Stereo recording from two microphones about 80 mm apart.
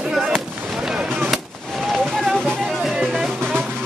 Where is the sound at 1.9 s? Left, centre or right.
Centre.